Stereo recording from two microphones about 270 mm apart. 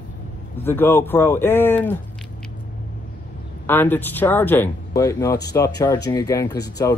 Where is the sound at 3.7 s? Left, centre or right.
Centre.